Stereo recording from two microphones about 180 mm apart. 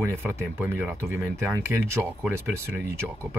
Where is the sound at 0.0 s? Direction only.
15° right (ahead or behind).